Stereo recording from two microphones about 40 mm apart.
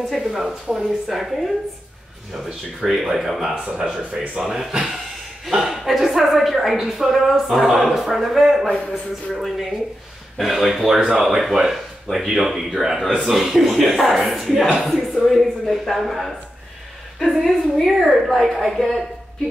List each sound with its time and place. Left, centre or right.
0.1 s speech: centre
2.9 s speech: centre
3.6 s speech: centre
11.0 s speech: right
11.2 s speech: centre